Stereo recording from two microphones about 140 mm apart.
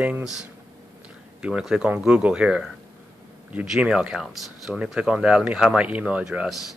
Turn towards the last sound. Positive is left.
turn(degrees=-5)  # may be behind; listen again after turning